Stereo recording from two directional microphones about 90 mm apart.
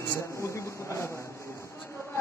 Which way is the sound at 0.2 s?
35° left (ahead or behind).